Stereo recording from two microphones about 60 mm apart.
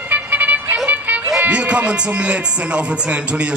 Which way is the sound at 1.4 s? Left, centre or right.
Right.